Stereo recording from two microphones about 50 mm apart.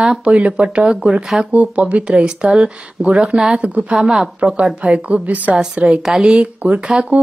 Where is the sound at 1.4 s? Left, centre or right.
Right.